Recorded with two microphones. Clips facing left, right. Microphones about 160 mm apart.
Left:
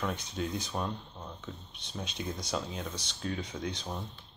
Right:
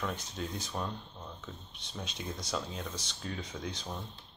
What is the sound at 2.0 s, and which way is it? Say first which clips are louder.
Speech: left 3 dB; centre (ahead or behind).